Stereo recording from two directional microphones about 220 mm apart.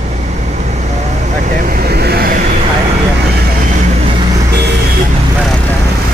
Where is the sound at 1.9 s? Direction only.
45° right (ahead or behind).